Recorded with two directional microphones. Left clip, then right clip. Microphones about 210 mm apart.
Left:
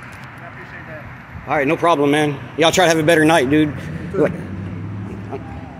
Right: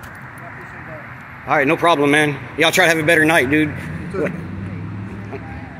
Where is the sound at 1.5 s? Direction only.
Centre (ahead or behind).